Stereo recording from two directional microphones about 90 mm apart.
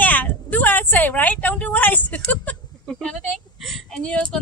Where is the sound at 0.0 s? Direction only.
20° left (ahead or behind).